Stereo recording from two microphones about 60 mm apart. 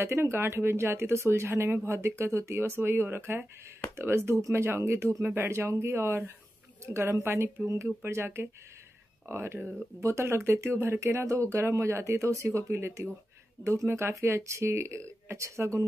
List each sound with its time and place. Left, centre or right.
0.0 s speech: right
8.0 s speech: right
12.7 s speech: right
14.1 s speech: right